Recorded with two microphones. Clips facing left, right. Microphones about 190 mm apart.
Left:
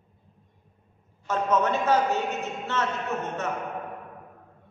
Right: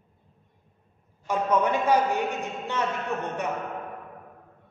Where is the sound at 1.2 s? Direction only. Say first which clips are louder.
Even; 10° right (ahead or behind).